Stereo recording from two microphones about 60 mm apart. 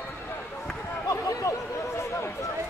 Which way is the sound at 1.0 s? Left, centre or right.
Left.